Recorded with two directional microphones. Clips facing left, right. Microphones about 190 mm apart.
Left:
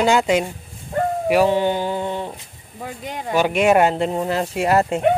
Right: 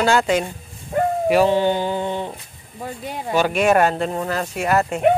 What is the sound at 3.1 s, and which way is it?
Speech, 5° right (ahead or behind).